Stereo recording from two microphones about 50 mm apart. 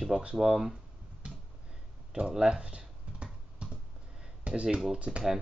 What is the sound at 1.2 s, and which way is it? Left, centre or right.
Finger snapping, right.